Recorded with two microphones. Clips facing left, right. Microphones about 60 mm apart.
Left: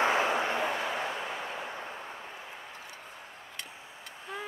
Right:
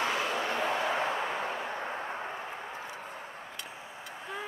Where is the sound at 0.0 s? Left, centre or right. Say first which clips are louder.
Left 4 dB; left.